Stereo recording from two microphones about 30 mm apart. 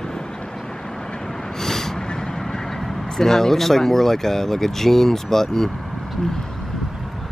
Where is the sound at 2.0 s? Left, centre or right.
Left.